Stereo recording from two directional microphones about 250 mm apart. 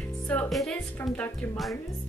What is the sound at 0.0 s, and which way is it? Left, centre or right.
Speech, centre.